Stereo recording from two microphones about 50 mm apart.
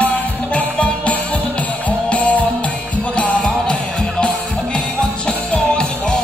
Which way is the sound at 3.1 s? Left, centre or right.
Centre.